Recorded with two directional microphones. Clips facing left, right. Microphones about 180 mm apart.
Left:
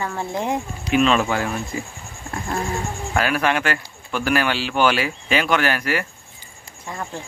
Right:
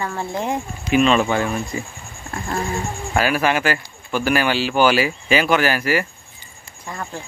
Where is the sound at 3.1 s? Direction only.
5° right (ahead or behind).